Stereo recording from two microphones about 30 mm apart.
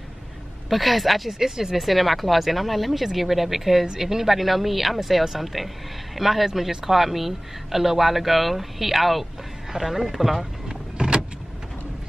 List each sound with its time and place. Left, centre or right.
0.7 s speech: centre
11.0 s vehicle: right